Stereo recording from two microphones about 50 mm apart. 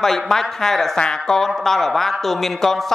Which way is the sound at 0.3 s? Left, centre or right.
Centre.